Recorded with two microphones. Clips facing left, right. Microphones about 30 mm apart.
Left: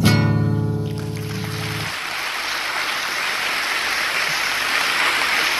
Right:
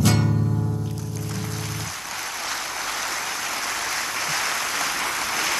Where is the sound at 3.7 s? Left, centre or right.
Left.